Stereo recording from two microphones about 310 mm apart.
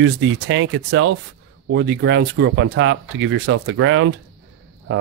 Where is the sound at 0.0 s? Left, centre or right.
Right.